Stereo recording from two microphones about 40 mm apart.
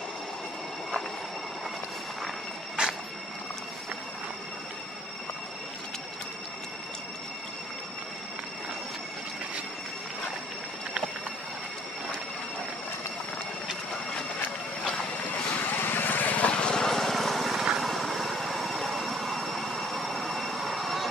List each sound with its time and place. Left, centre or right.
2.8 s music: right
15.6 s vehicle: left
16.4 s vehicle: left
16.8 s vehicle: centre
17.7 s train: centre